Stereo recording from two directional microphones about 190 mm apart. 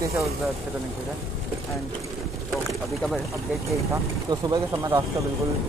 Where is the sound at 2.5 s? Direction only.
Centre (ahead or behind).